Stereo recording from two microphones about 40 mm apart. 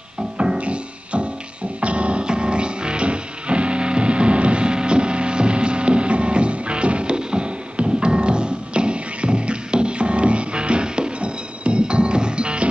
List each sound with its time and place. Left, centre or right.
0.4 s music: right